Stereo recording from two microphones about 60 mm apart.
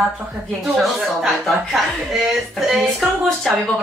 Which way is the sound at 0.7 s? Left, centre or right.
Centre.